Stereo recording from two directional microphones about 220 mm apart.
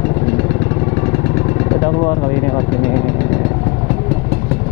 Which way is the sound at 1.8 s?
20° left (ahead or behind).